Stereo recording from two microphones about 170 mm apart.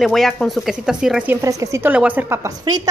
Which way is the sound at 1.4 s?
20° right (ahead or behind).